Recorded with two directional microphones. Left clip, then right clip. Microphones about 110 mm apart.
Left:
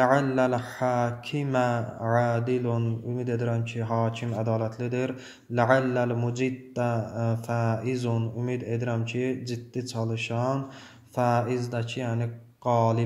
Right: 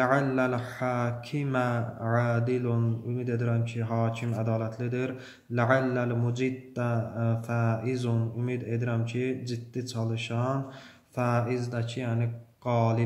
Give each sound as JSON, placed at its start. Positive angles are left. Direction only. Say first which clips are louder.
{"t": 0.0, "sound": "speech", "louder": "left 3 dB", "side_deg": 25}